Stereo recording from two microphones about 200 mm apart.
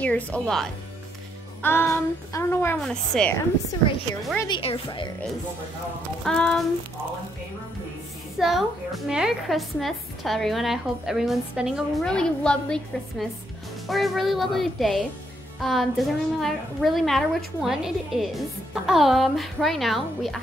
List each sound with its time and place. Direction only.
0.0 s a woman's voice: 5° left (ahead or behind)
1.6 s child singing: 10° left (ahead or behind)
2.8 s a woman's voice: 5° left (ahead or behind)
4.4 s a woman's voice: 25° left (ahead or behind)
6.2 s a woman's voice: 5° left (ahead or behind)
8.4 s a woman's voice: centre (ahead or behind)